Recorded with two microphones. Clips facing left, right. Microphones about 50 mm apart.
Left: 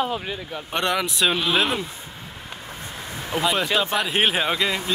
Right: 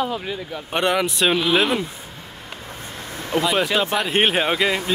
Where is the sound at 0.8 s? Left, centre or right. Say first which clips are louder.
Right 3 dB; centre.